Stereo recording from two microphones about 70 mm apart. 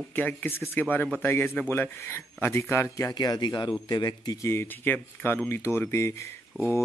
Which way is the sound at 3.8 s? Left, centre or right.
Left.